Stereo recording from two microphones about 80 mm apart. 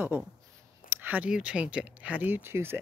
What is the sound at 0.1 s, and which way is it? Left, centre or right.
Speech, right.